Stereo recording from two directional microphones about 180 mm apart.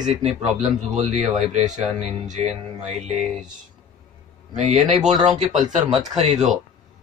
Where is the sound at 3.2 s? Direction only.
Centre (ahead or behind).